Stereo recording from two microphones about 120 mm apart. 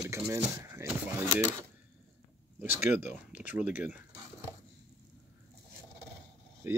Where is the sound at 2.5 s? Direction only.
15° right (ahead or behind).